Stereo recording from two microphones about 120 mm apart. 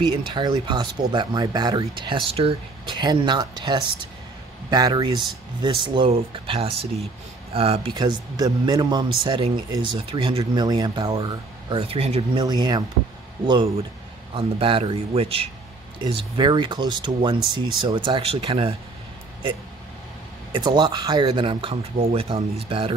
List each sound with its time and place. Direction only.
0.3 s speech: 40° right (ahead or behind)
7.9 s speech: 35° right (ahead or behind)
11.7 s speech: 50° right (ahead or behind)
12.4 s speech: 35° right (ahead or behind)
14.3 s speech: 50° right (ahead or behind)
20.5 s speech: 40° right (ahead or behind)